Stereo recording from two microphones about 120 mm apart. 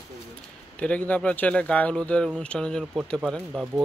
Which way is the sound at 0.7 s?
10° left (ahead or behind).